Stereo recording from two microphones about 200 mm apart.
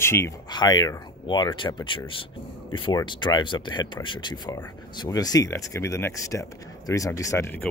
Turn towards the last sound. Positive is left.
turn(degrees=10)  # may be behind; listen again after turning